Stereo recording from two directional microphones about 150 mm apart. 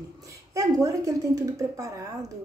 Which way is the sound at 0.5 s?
20° right (ahead or behind).